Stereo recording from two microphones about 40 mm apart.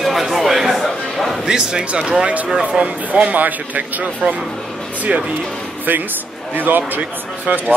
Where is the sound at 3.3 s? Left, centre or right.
Right.